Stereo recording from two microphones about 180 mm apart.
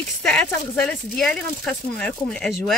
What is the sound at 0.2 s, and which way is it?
Speech, 5° left (ahead or behind).